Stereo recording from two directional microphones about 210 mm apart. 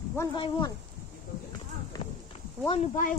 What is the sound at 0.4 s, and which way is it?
Speech, 20° left (ahead or behind).